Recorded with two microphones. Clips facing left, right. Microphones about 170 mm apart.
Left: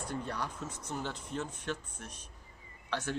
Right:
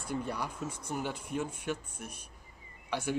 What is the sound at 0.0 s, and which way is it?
Speech, 10° right (ahead or behind).